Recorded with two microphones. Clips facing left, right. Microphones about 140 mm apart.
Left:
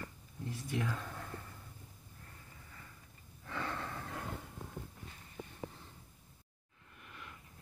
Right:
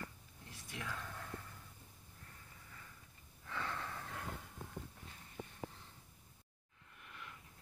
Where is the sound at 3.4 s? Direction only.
10° left (ahead or behind).